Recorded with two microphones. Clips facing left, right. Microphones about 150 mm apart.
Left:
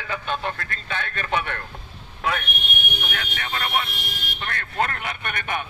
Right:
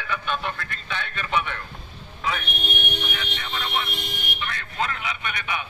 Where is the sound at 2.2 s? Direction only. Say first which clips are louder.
Left 2 dB; 55° left (ahead or behind).